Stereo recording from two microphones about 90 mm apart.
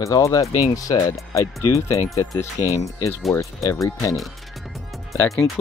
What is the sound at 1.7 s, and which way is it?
Speech, 35° left (ahead or behind).